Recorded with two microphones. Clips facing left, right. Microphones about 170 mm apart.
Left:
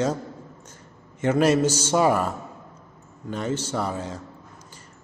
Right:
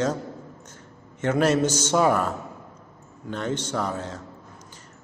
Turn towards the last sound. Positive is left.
turn(degrees=10)  # may be behind; listen again after turning